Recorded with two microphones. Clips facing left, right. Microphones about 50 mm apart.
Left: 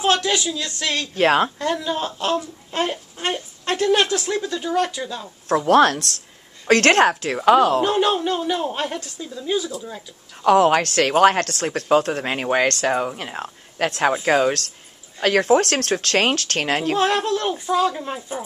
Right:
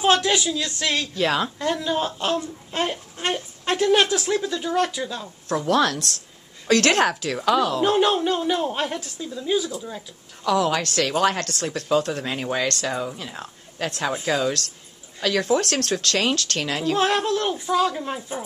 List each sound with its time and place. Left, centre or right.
0.0 s a woman's voice: centre
1.1 s speech: left
1.6 s a woman's voice: centre
5.7 s a woman's voice: left
7.8 s a woman's voice: centre
10.4 s speech: left
16.9 s a woman's voice: centre